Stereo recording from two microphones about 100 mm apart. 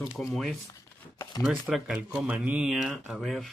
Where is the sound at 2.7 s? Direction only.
5° right (ahead or behind).